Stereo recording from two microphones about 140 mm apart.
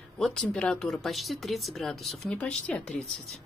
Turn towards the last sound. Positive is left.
turn(degrees=5)  # may be behind; listen again after turning